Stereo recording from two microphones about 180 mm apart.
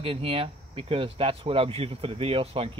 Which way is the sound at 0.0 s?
30° right (ahead or behind).